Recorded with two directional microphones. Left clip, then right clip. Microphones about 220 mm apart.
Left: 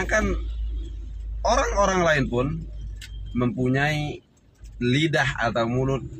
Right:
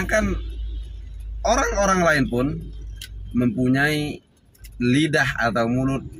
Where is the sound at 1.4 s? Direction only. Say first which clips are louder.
Right 1 dB; 5° right (ahead or behind).